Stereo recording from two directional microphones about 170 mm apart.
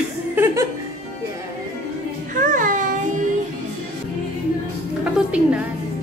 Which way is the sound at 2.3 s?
50° right (ahead or behind).